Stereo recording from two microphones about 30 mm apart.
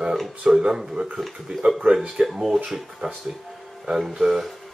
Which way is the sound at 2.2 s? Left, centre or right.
Right.